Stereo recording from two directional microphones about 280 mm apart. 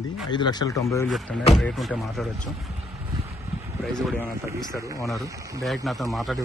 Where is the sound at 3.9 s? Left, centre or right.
Centre.